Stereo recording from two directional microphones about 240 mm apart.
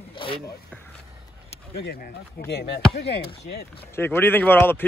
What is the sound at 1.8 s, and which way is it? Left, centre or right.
Speech, left.